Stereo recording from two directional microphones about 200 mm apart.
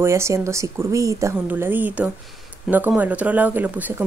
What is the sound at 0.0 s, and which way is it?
Speech, 15° right (ahead or behind).